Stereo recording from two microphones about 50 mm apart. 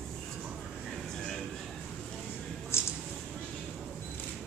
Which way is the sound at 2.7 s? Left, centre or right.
Left.